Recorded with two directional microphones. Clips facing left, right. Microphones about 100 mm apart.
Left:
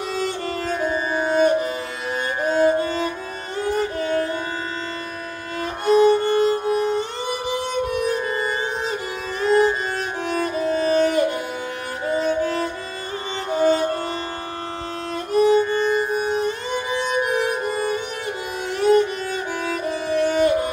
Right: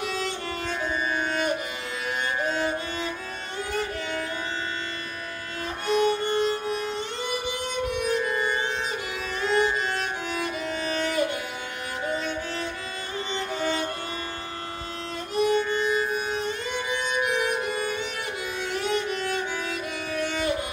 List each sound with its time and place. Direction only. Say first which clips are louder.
0.1 s music: left 6 dB; 40° left (ahead or behind)
5.9 s music: left 8 dB; 35° left (ahead or behind)
15.3 s music: left 7 dB; 35° left (ahead or behind)